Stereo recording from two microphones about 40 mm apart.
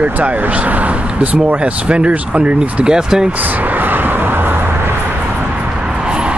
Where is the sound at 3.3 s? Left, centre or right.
Right.